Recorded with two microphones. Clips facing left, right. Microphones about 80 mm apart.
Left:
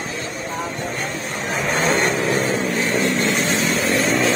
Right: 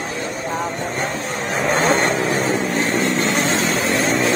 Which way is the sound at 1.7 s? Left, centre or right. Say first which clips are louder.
Right 2 dB; right.